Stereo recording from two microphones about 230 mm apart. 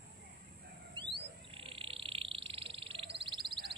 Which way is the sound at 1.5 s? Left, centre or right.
Right.